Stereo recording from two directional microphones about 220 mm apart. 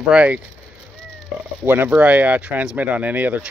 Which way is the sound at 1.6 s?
5° right (ahead or behind).